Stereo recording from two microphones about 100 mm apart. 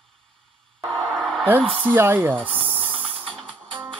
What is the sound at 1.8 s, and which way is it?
Speech, 25° right (ahead or behind).